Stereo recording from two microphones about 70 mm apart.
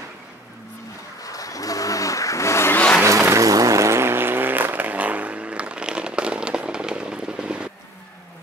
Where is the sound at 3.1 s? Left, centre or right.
Right.